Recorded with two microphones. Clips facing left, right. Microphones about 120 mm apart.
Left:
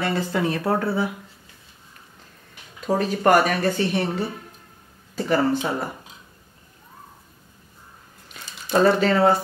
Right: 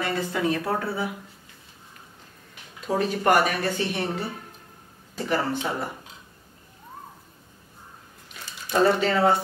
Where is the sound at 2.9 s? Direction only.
40° left (ahead or behind).